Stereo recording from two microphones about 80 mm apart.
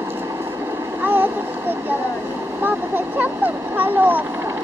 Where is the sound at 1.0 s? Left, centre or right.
Right.